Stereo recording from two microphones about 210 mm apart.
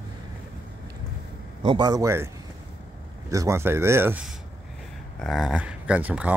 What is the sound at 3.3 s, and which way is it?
Speech, 15° right (ahead or behind).